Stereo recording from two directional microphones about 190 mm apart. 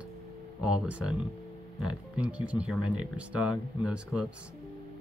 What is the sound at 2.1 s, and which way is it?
Speech, 5° right (ahead or behind).